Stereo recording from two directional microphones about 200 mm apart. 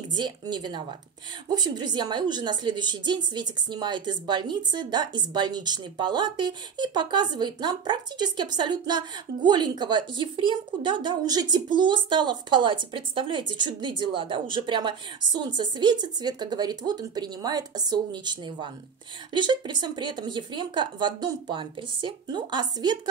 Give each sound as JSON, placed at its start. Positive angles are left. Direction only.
{"t": 0.1, "sound": "a woman's voice", "side_deg": -20}